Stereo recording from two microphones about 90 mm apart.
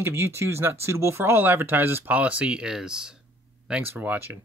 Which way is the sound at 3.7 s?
20° right (ahead or behind).